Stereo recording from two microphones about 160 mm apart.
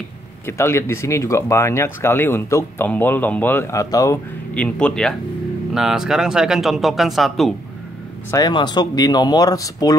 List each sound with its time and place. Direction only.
0.5 s speech: 15° left (ahead or behind)
4.6 s speech: 5° left (ahead or behind)
8.3 s speech: 25° left (ahead or behind)